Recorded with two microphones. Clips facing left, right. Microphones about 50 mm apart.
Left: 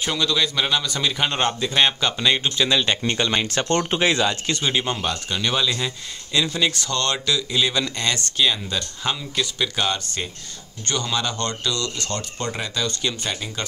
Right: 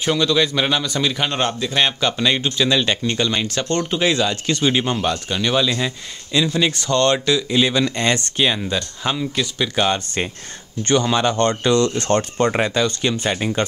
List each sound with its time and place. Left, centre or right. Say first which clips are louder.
0.0 s a man's voice: right 5 dB; centre
3.1 s speech: right 1 dB; centre
4.7 s a man's voice: right 4 dB; centre
9.8 s speech: right 8 dB; right
12.8 s speech: right 6 dB; right